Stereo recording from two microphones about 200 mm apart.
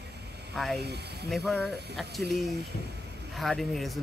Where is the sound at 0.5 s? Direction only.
Centre (ahead or behind).